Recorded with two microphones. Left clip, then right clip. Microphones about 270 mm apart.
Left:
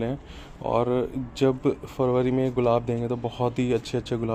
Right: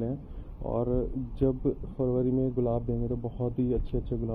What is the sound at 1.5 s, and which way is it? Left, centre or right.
Speech, left.